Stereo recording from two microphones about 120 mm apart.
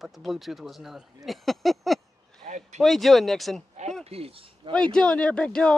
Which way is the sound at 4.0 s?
55° right (ahead or behind).